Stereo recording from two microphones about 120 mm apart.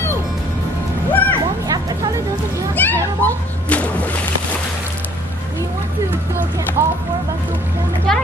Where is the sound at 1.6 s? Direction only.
30° right (ahead or behind).